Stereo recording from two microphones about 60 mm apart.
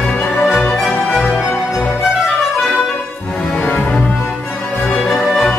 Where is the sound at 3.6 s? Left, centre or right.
Left.